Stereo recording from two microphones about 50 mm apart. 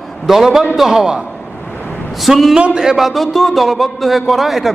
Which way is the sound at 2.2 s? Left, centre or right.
Centre.